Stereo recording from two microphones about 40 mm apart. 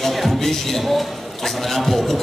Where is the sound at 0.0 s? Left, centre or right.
Centre.